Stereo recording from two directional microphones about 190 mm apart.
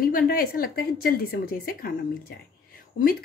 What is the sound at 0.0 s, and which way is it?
A woman's voice, 50° left (ahead or behind).